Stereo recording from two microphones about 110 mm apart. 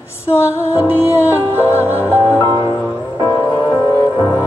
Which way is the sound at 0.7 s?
20° right (ahead or behind).